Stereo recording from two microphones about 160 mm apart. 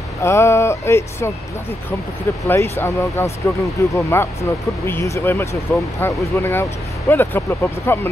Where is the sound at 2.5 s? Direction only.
15° left (ahead or behind).